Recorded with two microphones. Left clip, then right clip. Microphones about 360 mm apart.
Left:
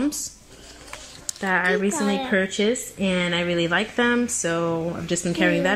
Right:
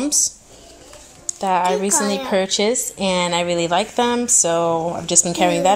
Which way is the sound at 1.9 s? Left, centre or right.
Right.